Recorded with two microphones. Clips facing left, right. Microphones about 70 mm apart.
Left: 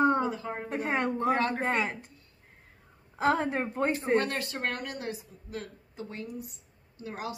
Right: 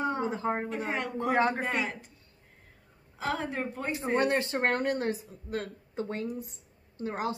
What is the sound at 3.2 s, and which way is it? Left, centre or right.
Speech, left.